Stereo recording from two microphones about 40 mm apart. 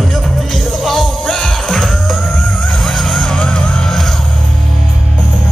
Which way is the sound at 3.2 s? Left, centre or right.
Left.